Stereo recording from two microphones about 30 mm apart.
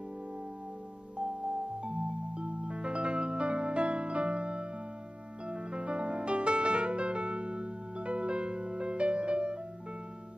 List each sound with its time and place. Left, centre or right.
1.1 s music: right